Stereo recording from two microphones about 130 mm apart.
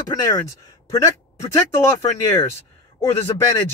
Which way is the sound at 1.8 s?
20° left (ahead or behind).